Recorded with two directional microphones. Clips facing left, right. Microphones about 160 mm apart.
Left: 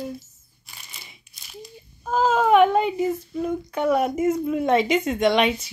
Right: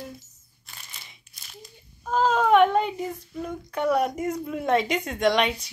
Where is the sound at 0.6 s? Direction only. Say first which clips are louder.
Left 1 dB; 10° left (ahead or behind).